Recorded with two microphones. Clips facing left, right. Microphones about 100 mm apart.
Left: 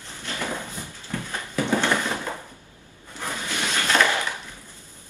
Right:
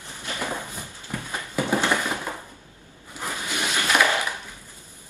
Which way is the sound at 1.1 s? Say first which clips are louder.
Even; 15° right (ahead or behind).